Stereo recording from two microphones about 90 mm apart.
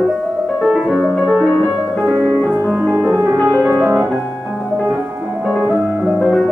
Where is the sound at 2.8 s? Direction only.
15° left (ahead or behind).